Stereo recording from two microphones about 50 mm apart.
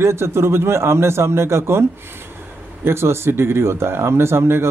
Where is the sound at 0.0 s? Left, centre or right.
Right.